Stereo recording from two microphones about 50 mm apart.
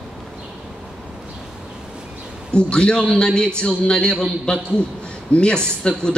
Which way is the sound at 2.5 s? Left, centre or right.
Centre.